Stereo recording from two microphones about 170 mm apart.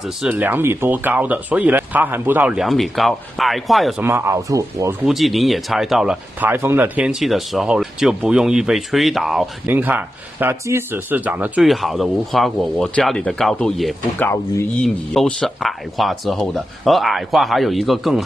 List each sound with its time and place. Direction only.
0.0 s speech: 5° right (ahead or behind)
4.0 s speech: 15° right (ahead or behind)
5.0 s speech: centre (ahead or behind)